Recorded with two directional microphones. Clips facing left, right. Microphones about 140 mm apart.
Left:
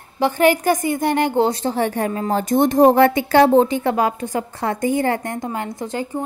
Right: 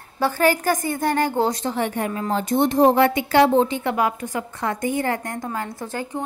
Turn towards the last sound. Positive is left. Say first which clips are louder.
# left 3 dB
turn(degrees=15)  # may be behind; listen again after turning